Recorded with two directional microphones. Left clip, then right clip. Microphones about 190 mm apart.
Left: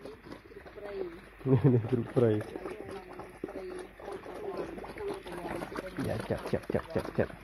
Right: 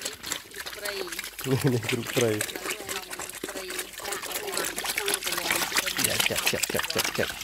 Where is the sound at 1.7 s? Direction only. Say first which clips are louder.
Right 2 dB; 5° right (ahead or behind).